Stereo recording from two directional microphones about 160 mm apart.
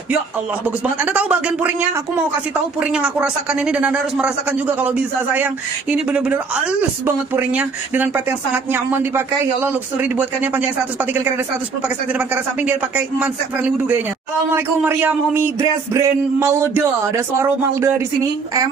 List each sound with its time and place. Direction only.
0.7 s speech: 10° right (ahead or behind)
12.6 s speech: 10° right (ahead or behind)